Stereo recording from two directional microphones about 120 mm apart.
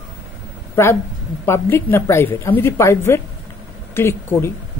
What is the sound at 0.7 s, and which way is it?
A woman's voice, 20° left (ahead or behind).